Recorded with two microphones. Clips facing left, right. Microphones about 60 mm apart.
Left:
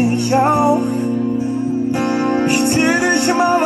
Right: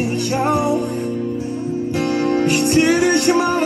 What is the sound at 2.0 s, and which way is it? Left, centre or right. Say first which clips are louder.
Music: right 1 dB; centre.